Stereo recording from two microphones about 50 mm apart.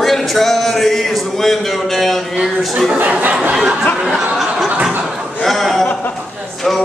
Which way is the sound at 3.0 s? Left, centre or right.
Right.